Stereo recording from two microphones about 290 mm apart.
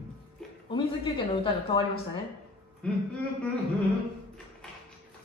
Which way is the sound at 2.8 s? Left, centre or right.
Centre.